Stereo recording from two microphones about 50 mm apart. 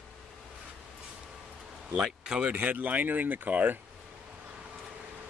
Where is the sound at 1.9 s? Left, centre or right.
Centre.